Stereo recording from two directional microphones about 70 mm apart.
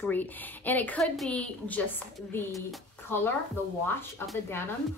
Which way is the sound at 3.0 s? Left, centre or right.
Left.